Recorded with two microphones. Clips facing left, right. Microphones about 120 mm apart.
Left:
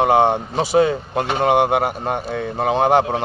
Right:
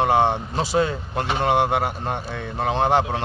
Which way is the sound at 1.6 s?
55° left (ahead or behind).